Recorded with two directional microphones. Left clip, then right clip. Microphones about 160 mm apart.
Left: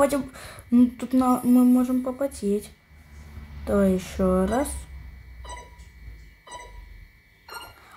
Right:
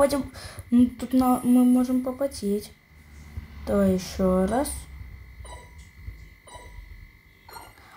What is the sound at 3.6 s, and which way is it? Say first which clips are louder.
Speech: left 1 dB; 5° left (ahead or behind).